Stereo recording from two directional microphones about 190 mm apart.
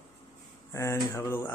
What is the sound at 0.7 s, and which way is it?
Speech, 15° left (ahead or behind).